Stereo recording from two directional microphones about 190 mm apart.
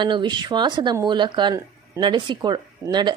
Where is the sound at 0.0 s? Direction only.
25° right (ahead or behind).